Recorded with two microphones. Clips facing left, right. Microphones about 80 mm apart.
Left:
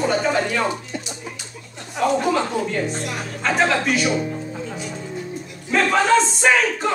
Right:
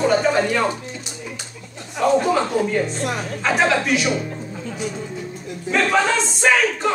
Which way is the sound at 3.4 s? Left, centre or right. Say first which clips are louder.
Even; centre.